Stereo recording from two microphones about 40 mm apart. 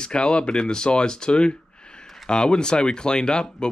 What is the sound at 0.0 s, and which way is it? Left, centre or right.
Speech, left.